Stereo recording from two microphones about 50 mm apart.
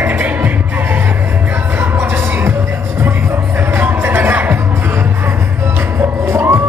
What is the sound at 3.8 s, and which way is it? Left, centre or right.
Music, right.